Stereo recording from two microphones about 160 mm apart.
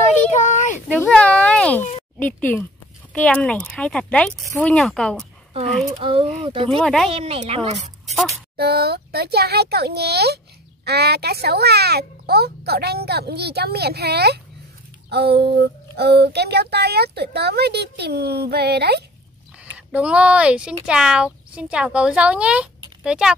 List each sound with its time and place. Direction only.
0.3 s a sound: 50° left (ahead or behind)
0.8 s a sound: 5° left (ahead or behind)
2.1 s speech: 10° left (ahead or behind)
5.9 s speech: 40° right (ahead or behind)
6.8 s speech: 5° left (ahead or behind)
7.2 s speech: 40° right (ahead or behind)
8.5 s a child's voice: 80° right
19.9 s speech: 5° right (ahead or behind)